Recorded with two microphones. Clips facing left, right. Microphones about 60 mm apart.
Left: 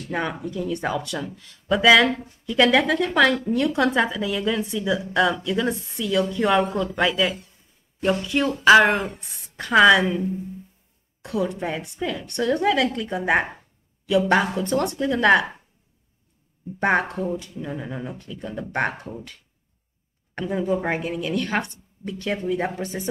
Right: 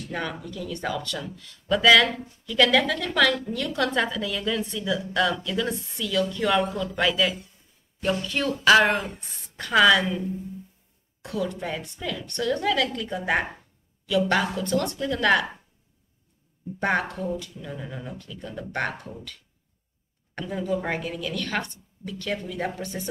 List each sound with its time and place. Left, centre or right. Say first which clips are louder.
0.1 s a woman's voice: left 5 dB; left
11.3 s a woman's voice: left 4 dB; left
16.8 s a woman's voice: left 4 dB; left
20.3 s a woman's voice: left 4 dB; left